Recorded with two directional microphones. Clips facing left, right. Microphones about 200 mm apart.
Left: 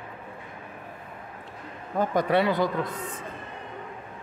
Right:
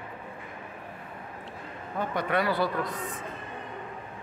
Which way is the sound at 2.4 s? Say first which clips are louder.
Even; 20° left (ahead or behind).